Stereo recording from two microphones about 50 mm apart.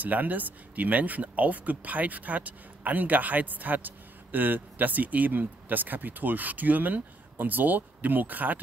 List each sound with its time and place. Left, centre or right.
0.0 s speech: right